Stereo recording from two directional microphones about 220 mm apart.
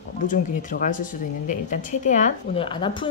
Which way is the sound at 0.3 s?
35° left (ahead or behind).